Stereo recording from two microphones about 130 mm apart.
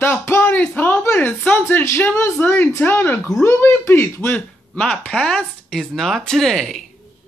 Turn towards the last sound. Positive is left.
turn(degrees=5)  # may be behind; listen again after turning